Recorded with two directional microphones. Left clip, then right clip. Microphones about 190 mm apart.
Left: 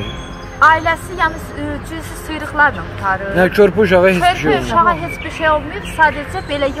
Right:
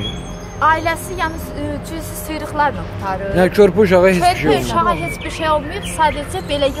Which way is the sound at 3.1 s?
5° right (ahead or behind).